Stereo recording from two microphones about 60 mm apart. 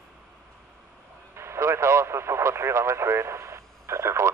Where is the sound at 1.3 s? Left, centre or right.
Right.